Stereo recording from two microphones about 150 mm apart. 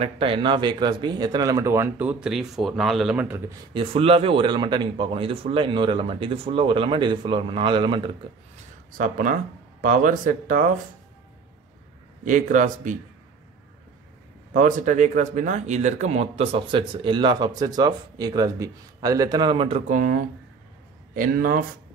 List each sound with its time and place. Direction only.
0.0 s speech: 35° right (ahead or behind); by 3.5 s 15° right (ahead or behind)
3.7 s speech: 40° right (ahead or behind)
8.9 s speech: 65° right (ahead or behind)
12.3 s speech: 60° right (ahead or behind)
14.5 s speech: 55° right (ahead or behind); by 19.8 s 35° right (ahead or behind)
19.9 s speech: 65° right (ahead or behind)